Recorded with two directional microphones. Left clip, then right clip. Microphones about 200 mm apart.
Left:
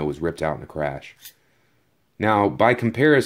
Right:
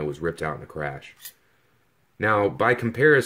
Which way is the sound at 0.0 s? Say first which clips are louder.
Left 3 dB; 35° left (ahead or behind).